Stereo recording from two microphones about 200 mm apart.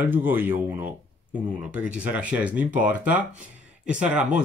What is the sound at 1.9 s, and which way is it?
Speech, 5° right (ahead or behind).